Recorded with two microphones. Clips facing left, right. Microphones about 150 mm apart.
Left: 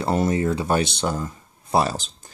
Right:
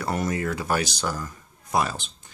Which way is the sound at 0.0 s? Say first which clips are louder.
Left 5 dB; 25° left (ahead or behind).